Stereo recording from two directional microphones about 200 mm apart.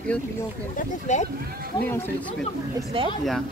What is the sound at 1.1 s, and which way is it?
Speech, 35° left (ahead or behind).